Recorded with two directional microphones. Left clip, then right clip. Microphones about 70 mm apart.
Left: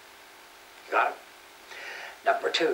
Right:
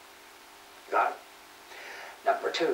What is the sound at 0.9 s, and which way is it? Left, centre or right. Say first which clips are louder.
Speech: left 1 dB; left.